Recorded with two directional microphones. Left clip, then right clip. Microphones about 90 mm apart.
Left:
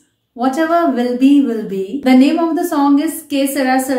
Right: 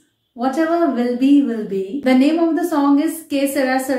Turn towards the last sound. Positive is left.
turn(degrees=15)  # may be behind; listen again after turning